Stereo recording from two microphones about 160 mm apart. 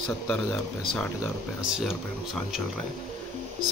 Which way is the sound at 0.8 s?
5° left (ahead or behind).